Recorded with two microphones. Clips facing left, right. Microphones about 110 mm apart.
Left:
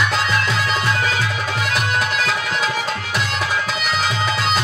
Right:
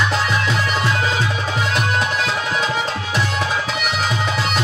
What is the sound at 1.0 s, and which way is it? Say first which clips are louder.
Music: right 1 dB; 30° right (ahead or behind).